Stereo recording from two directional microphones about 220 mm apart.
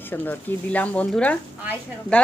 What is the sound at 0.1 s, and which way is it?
Speech, 10° left (ahead or behind).